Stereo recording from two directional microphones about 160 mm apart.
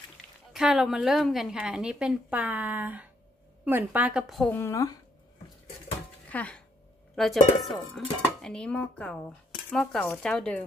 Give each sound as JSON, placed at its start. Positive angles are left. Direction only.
{"t": 0.5, "sound": "a woman's voice", "side_deg": 0}
{"t": 4.5, "sound": "a woman's voice", "side_deg": 15}
{"t": 6.3, "sound": "a woman's voice", "side_deg": 10}